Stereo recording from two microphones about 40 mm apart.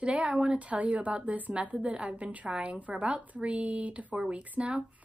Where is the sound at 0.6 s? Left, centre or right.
Right.